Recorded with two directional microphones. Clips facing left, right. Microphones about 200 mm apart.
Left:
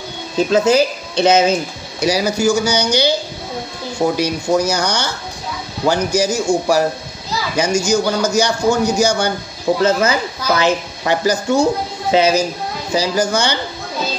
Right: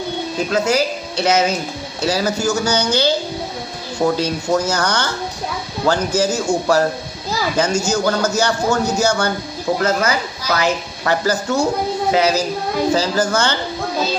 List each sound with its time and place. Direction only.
0.5 s a woman's voice: 25° left (ahead or behind)
4.2 s a man's voice: 15° left (ahead or behind)